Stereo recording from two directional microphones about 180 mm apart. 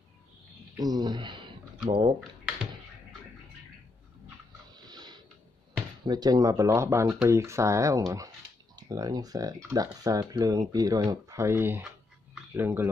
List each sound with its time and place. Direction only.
0.7 s speech: 20° right (ahead or behind)
4.8 s a sound: 25° right (ahead or behind)
6.0 s speech: 20° right (ahead or behind)